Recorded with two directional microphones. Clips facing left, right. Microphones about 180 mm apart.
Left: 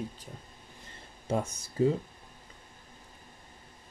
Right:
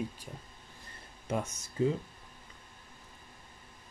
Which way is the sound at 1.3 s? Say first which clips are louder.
Left 3 dB; 35° left (ahead or behind).